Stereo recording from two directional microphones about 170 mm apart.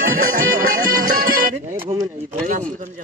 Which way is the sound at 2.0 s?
50° right (ahead or behind).